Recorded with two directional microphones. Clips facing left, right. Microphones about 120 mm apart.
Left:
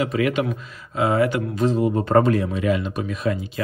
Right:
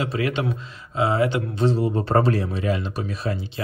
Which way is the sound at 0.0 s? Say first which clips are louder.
Left 3 dB; 30° right (ahead or behind).